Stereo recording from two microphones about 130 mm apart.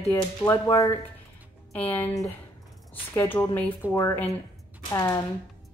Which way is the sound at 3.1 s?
20° left (ahead or behind).